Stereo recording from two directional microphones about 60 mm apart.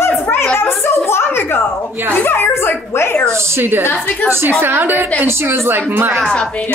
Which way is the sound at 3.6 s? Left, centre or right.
Right.